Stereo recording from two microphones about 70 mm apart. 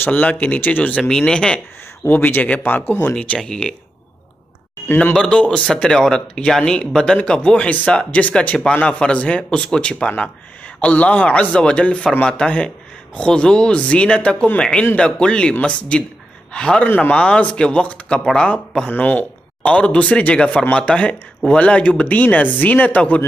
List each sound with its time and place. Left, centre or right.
0.0 s speech: left
2.0 s speech: left
3.2 s speech: centre
4.8 s speech: left
5.1 s speech: centre
18.9 s speech: left